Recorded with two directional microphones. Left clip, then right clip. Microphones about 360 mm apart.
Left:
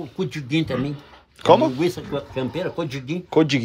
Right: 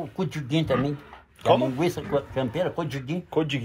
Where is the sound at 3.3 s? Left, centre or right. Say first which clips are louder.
Left 8 dB; left.